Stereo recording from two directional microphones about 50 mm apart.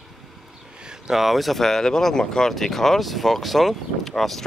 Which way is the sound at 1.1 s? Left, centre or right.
Centre.